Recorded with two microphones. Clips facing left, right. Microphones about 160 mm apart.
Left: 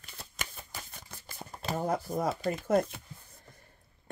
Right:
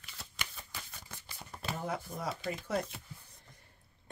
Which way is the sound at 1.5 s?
40° left (ahead or behind).